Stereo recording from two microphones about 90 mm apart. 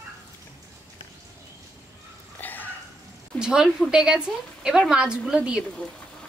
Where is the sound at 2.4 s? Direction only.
20° left (ahead or behind).